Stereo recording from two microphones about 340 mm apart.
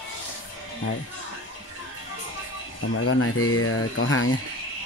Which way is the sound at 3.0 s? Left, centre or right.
Left.